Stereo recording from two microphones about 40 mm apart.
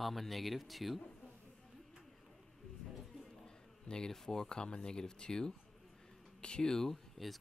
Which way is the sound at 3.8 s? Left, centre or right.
Centre.